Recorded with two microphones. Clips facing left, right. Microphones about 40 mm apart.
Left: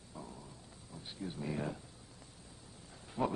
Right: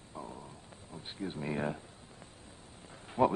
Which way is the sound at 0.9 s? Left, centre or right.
Right.